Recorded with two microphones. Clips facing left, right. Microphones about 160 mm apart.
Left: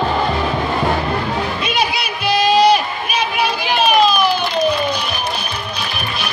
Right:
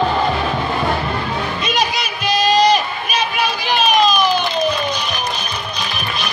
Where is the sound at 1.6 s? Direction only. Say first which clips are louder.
Even; 10° left (ahead or behind).